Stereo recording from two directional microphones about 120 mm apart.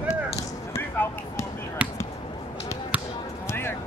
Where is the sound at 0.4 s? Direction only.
30° left (ahead or behind).